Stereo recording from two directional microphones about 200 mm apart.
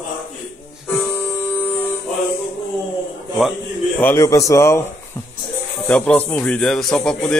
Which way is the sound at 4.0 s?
10° left (ahead or behind).